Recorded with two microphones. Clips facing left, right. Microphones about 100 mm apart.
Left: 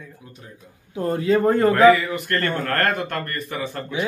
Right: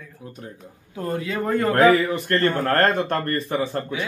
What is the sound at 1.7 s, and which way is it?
A man's voice, 30° right (ahead or behind).